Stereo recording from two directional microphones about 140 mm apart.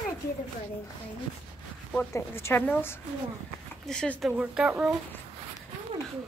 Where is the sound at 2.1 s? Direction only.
15° left (ahead or behind).